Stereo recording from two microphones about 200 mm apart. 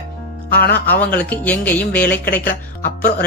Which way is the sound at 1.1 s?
10° left (ahead or behind).